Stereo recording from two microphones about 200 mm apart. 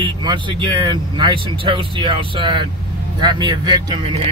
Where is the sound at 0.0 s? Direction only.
25° right (ahead or behind).